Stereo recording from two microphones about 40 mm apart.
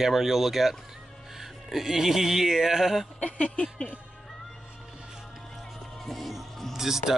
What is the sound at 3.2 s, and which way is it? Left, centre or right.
Speech, left.